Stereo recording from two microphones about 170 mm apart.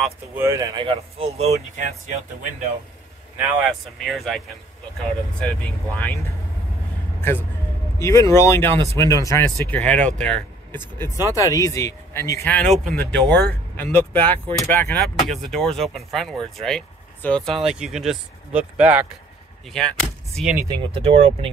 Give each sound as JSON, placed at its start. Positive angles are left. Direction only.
{"t": 0.4, "sound": "speech", "side_deg": -20}
{"t": 3.3, "sound": "speech", "side_deg": -10}
{"t": 5.4, "sound": "speech", "side_deg": 5}
{"t": 7.2, "sound": "speech", "side_deg": 15}
{"t": 11.0, "sound": "speech", "side_deg": 20}
{"t": 19.7, "sound": "speech", "side_deg": 5}
{"t": 20.9, "sound": "speech", "side_deg": -35}